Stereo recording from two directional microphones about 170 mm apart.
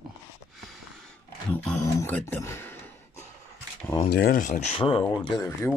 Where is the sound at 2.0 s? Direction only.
15° left (ahead or behind).